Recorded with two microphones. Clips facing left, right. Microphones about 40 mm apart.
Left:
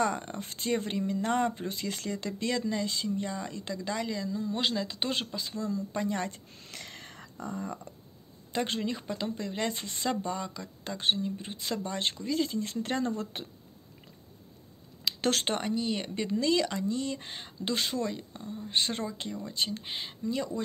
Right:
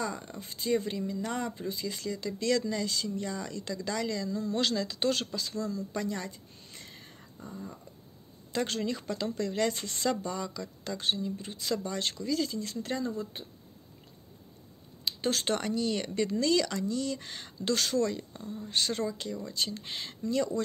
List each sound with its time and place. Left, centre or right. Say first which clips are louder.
0.0 s speech: left 6 dB; left
2.4 s speech: right 2 dB; left
6.1 s speech: left 4 dB; left
6.5 s a sound: left 4 dB; left
8.5 s speech: even; left
15.4 s speech: even; left
18.7 s speech: even; left